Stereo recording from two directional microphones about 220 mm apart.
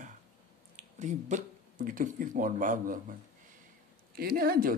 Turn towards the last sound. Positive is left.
turn(degrees=-40)  # may be behind; listen again after turning